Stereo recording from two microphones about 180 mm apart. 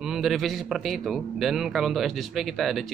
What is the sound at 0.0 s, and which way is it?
A man's voice, centre (ahead or behind).